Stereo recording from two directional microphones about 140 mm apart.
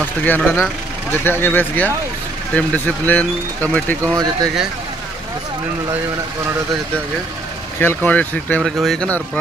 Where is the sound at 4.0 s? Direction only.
25° right (ahead or behind).